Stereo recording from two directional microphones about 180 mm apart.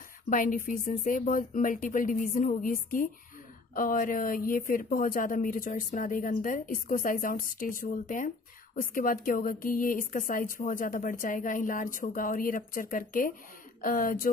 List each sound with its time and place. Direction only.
0.3 s speech: 50° left (ahead or behind)